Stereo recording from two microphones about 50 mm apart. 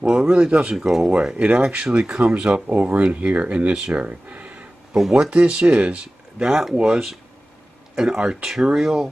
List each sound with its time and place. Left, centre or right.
0.0 s speech: centre
0.5 s speech: right
6.5 s speech: centre